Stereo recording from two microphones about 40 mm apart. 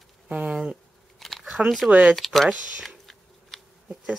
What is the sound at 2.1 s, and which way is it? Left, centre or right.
Speech, centre.